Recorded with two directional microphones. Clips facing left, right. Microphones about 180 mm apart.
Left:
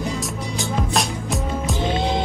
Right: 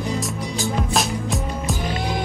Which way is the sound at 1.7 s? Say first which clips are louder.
Left 5 dB; 25° left (ahead or behind).